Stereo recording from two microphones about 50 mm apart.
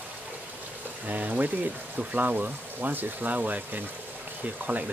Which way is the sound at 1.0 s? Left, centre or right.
Right.